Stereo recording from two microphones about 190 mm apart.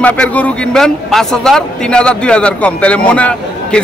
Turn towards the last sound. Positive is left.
turn(degrees=5)  # may be behind; listen again after turning